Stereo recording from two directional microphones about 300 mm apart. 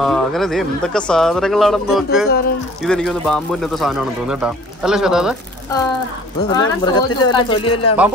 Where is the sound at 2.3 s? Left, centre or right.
Left.